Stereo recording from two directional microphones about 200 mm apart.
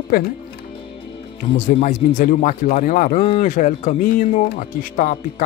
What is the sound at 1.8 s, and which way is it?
Speech, 40° left (ahead or behind).